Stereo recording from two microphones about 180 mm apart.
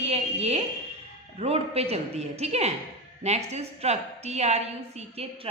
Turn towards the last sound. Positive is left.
turn(degrees=-35)  # may be behind; listen again after turning